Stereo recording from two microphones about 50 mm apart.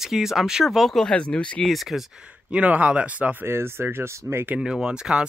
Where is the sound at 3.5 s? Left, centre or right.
Right.